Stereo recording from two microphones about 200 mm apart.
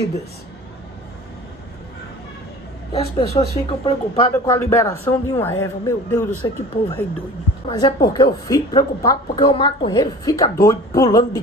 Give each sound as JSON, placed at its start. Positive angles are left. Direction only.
{"t": 2.9, "sound": "a woman's voice", "side_deg": 30}
{"t": 4.3, "sound": "a woman's voice", "side_deg": 10}